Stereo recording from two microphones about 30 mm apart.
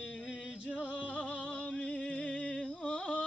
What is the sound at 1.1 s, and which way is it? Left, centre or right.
Music, left.